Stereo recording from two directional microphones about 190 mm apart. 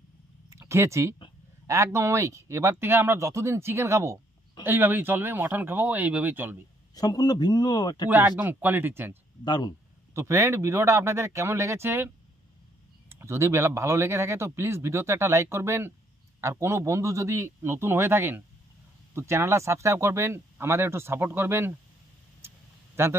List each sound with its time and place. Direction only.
0.6 s speech: 15° right (ahead or behind)
7.0 s speech: 20° left (ahead or behind)
8.1 s speech: 10° right (ahead or behind)
9.4 s speech: 20° left (ahead or behind)
10.1 s speech: 15° right (ahead or behind)
13.1 s speech: 15° right (ahead or behind)
22.4 s a sound: 15° right (ahead or behind)
23.0 s speech: 10° right (ahead or behind)